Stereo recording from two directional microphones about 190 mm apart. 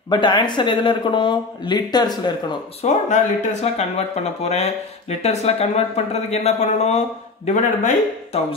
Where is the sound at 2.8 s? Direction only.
40° left (ahead or behind).